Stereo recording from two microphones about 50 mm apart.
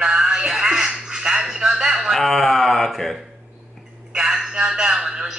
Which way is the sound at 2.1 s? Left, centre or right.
Centre.